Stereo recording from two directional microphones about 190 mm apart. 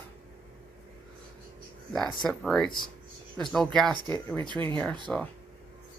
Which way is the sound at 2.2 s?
Centre (ahead or behind).